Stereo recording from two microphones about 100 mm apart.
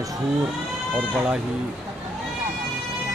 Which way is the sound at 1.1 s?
5° right (ahead or behind).